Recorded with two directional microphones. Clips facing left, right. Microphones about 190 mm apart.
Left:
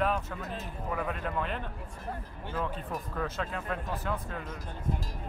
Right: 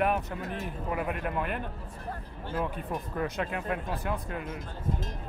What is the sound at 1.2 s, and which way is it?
Speech, 10° right (ahead or behind).